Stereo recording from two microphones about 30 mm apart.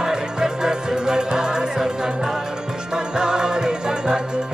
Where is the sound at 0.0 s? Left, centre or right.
Right.